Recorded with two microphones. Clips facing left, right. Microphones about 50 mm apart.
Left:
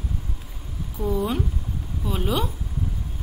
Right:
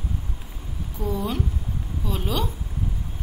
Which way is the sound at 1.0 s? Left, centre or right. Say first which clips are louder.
Left 2 dB; centre.